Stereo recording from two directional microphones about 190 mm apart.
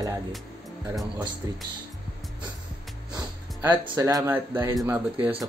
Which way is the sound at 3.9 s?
20° right (ahead or behind).